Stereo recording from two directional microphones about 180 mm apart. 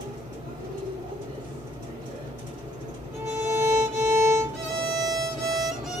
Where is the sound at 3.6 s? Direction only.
15° right (ahead or behind).